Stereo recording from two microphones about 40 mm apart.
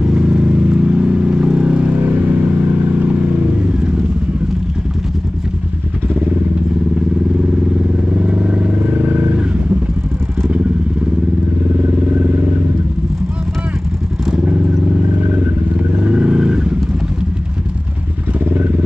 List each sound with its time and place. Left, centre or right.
0.0 s vehicle: right
8.2 s vehicle: right
8.9 s vehicle: right
16.1 s vehicle: right
18.4 s vehicle: right